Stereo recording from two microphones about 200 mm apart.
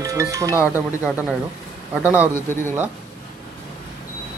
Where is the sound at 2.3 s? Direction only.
10° left (ahead or behind).